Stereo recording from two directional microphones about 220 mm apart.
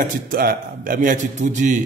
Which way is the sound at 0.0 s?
40° right (ahead or behind).